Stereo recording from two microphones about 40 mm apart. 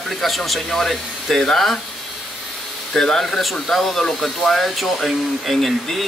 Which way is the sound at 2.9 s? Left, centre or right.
Centre.